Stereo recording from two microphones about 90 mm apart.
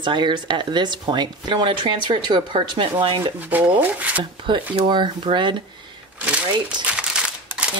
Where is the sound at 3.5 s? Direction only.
20° right (ahead or behind).